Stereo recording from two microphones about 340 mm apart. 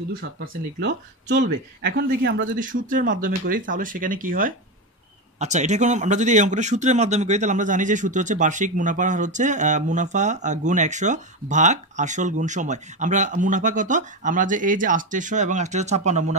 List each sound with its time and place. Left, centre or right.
0.7 s a man's voice: right